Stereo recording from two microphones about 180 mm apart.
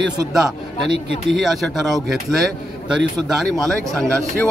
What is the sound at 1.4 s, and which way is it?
Speech, centre (ahead or behind).